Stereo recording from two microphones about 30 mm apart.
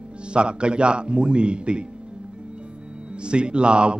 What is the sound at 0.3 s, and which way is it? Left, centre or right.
A man's voice, right.